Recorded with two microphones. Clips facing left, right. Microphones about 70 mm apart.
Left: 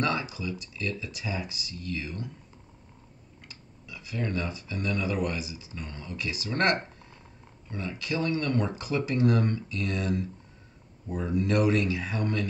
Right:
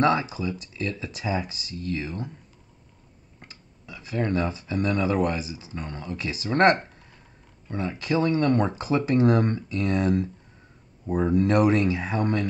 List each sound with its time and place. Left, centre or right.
0.0 s speech: right
3.3 s speech: right